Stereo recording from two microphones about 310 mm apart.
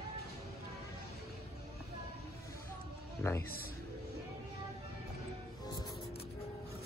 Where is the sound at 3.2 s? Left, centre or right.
Centre.